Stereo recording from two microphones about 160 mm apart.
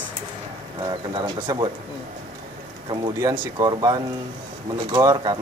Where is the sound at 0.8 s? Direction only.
25° right (ahead or behind).